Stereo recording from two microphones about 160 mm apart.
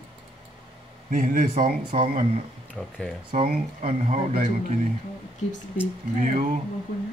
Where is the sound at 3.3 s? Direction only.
50° right (ahead or behind).